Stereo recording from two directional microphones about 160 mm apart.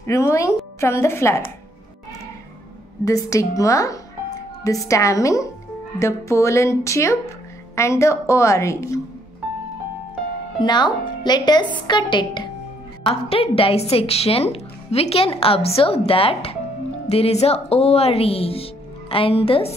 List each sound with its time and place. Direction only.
0.0 s speech: 15° left (ahead or behind)
3.1 s speech: 20° left (ahead or behind)
10.6 s a woman's voice: 30° left (ahead or behind)